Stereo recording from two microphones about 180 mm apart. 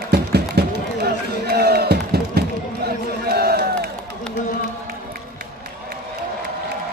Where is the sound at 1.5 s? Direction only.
60° right (ahead or behind).